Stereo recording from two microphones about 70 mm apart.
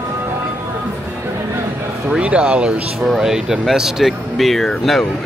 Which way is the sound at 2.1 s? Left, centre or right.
Centre.